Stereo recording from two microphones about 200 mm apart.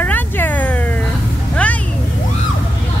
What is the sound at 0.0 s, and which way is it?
Cat, 10° left (ahead or behind).